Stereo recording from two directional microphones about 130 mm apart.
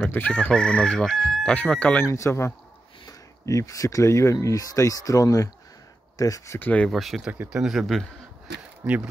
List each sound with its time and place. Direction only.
0.0 s chicken: 10° left (ahead or behind)
1.5 s speech: 10° left (ahead or behind)
2.0 s speech: 20° left (ahead or behind)
6.9 s chicken: centre (ahead or behind)
8.8 s speech: 10° right (ahead or behind)